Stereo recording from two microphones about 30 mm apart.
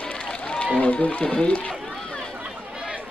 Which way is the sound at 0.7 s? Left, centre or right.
Left.